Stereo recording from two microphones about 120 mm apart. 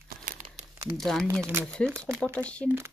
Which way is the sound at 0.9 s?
5° left (ahead or behind).